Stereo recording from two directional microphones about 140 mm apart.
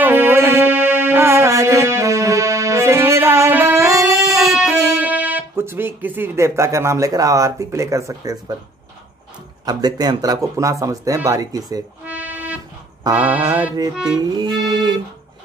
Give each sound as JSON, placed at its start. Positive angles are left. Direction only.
{"t": 0.0, "sound": "music", "side_deg": -15}
{"t": 5.0, "sound": "speech", "side_deg": -10}
{"t": 9.7, "sound": "speech", "side_deg": -30}
{"t": 12.0, "sound": "music", "side_deg": -10}
{"t": 14.0, "sound": "speech", "side_deg": -30}